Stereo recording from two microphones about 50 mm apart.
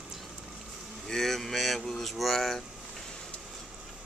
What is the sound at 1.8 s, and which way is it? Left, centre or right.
Speech, centre.